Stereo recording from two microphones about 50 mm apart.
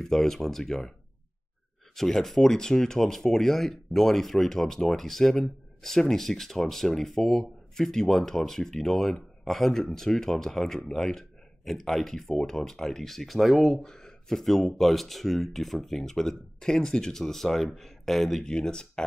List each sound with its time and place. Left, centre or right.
0.0 s speech: centre
2.0 s speech: centre
13.8 s a man's voice: centre
18.4 s speech: centre